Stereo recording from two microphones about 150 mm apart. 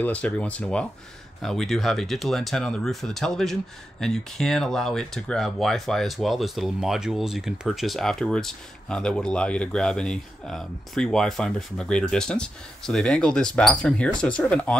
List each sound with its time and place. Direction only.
0.0 s speech: 10° left (ahead or behind)